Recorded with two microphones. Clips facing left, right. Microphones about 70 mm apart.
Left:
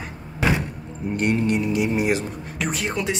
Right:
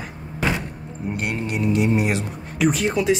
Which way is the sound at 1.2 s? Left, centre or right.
Centre.